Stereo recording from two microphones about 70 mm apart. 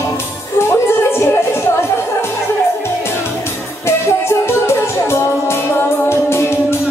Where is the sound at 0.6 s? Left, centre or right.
Left.